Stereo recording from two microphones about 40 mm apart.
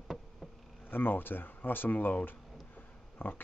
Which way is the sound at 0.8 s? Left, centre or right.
Left.